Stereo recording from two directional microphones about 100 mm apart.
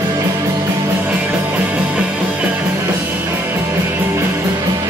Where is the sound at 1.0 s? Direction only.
15° right (ahead or behind).